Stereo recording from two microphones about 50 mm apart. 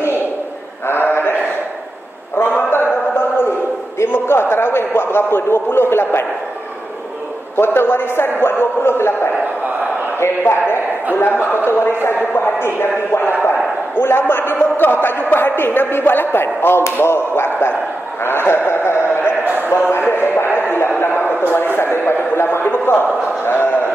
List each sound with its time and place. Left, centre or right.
0.8 s mantra: left
2.3 s a sound: left
7.5 s a man's voice: left
20.3 s music: left
21.0 s a man's voice: left